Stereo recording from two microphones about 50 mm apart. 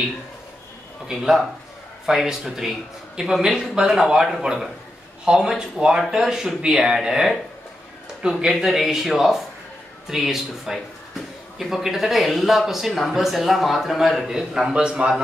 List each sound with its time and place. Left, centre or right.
1.0 s speech: centre
8.5 s speech: centre
14.7 s a man's voice: right